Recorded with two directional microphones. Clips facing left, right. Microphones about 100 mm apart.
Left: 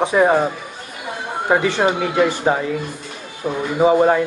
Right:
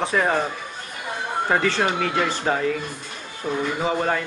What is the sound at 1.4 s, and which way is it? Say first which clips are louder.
Speech: left 5 dB; 15° left (ahead or behind).